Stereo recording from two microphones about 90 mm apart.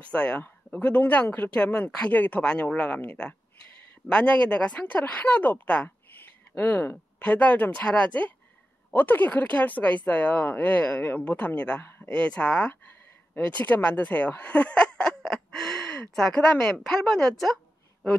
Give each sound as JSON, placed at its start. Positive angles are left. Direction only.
{"t": 0.0, "sound": "speech", "side_deg": 15}